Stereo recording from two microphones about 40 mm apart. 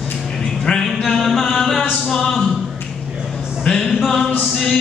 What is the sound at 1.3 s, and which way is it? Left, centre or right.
Chant, centre.